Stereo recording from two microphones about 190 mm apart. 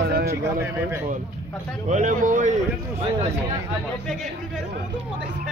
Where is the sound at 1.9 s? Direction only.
40° right (ahead or behind).